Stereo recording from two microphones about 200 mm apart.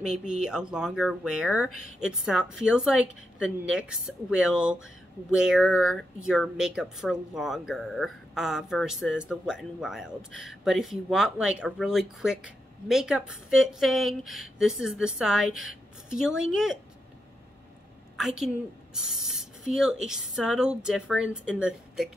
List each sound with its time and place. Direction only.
0.0 s speech: 5° right (ahead or behind)
1.7 s a woman's voice: 90° right
2.0 s speech: 5° right (ahead or behind)
18.1 s a woman's voice: 5° right (ahead or behind)